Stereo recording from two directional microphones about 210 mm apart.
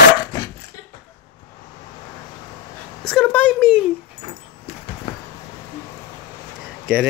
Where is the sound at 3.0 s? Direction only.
5° left (ahead or behind).